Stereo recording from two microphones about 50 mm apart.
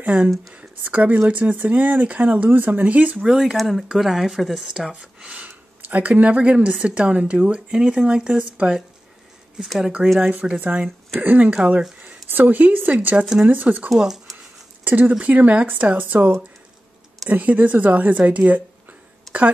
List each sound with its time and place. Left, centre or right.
0.0 s speech: right
3.3 s speech: centre
3.5 s speech: centre
5.2 s speech: right
10.0 s speech: centre
10.6 s speech: right
11.5 s speech: right
12.3 s speech: right
13.8 s speech: centre
14.9 s speech: right
17.3 s speech: right
19.3 s a sound: centre